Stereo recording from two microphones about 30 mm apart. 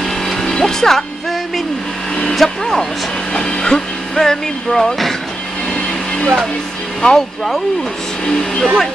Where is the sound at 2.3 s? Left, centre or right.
Centre.